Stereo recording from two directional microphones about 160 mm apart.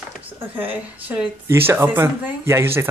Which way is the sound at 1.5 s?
15° right (ahead or behind).